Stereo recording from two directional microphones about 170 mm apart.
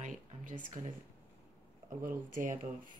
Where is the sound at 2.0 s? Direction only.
50° right (ahead or behind).